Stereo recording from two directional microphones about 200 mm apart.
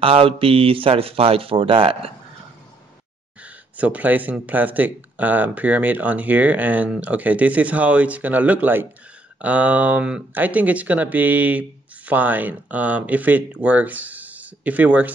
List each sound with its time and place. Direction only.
0.0 s speech: 30° right (ahead or behind)
3.7 s speech: 5° right (ahead or behind)